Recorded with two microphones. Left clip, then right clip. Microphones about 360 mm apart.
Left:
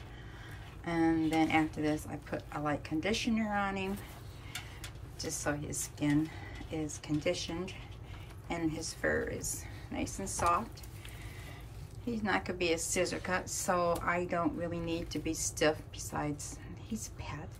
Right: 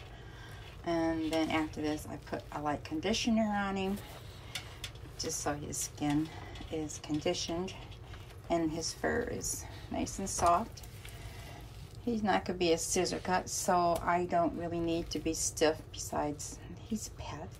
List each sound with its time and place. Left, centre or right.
0.8 s a woman's voice: centre
5.1 s a woman's voice: centre
12.1 s a woman's voice: centre